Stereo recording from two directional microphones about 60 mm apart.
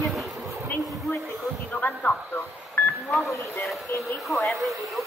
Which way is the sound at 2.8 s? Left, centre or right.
Left.